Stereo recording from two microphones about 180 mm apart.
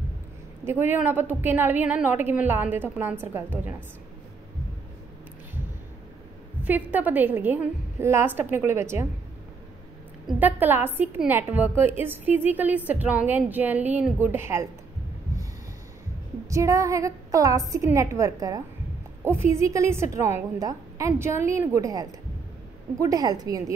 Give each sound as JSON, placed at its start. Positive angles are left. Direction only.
{"t": 0.7, "sound": "a woman's voice", "side_deg": -10}
{"t": 6.6, "sound": "a woman's voice", "side_deg": -10}
{"t": 10.2, "sound": "a woman's voice", "side_deg": -10}
{"t": 16.4, "sound": "a woman's voice", "side_deg": -15}